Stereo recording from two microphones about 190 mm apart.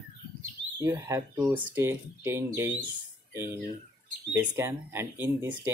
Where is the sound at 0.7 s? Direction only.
15° right (ahead or behind).